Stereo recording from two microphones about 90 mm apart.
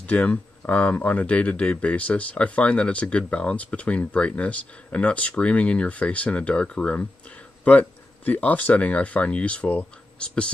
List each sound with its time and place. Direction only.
0.0 s speech: 15° left (ahead or behind)
8.3 s speech: 15° left (ahead or behind)